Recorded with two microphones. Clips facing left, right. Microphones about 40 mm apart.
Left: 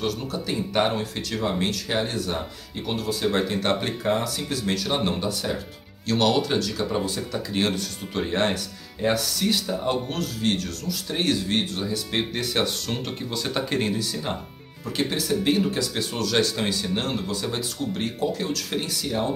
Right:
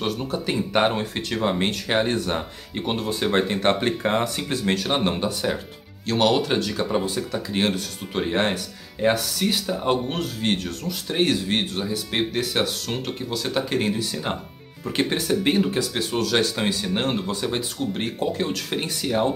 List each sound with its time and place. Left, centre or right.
0.0 s speech: right
6.0 s speech: centre
14.9 s speech: right